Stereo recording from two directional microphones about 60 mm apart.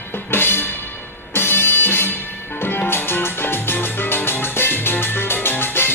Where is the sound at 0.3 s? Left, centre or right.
Left.